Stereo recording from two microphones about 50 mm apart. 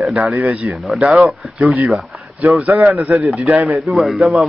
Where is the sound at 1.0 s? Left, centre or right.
Right.